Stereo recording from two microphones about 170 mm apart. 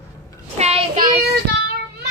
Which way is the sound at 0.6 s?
35° right (ahead or behind).